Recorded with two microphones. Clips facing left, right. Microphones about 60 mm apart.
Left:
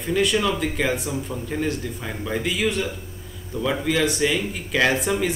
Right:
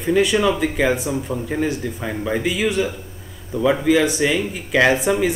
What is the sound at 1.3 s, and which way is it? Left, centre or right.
Speech, centre.